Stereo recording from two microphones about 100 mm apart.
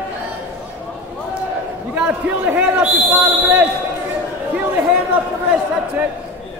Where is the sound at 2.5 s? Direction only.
20° right (ahead or behind).